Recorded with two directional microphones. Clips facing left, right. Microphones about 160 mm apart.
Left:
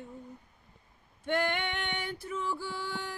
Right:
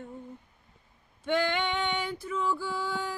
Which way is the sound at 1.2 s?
90° right.